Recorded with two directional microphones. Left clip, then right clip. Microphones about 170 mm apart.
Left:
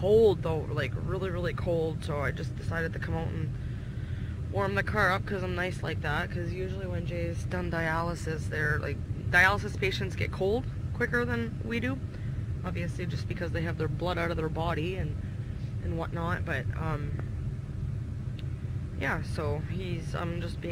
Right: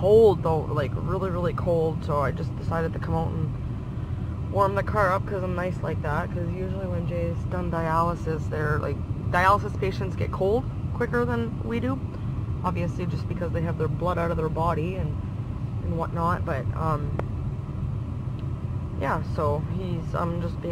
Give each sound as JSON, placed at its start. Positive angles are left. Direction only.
{"t": 0.0, "sound": "speech", "side_deg": 20}
{"t": 4.6, "sound": "speech", "side_deg": 30}
{"t": 12.7, "sound": "speech", "side_deg": 5}
{"t": 13.4, "sound": "speech", "side_deg": 40}
{"t": 16.0, "sound": "speech", "side_deg": 30}
{"t": 18.9, "sound": "speech", "side_deg": 25}